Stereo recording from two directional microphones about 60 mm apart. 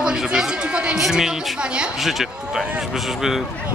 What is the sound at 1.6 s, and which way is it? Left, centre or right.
Speech, centre.